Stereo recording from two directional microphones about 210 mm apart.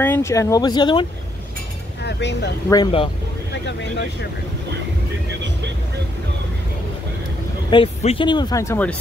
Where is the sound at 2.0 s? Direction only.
55° left (ahead or behind).